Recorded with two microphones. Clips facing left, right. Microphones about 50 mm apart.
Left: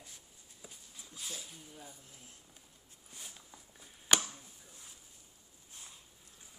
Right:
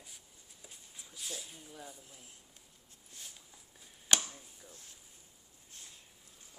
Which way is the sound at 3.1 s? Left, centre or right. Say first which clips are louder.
Left 2 dB; centre.